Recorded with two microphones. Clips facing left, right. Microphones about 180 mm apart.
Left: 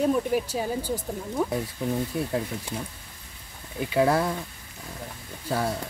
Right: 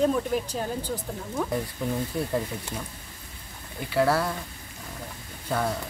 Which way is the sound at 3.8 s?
15° left (ahead or behind).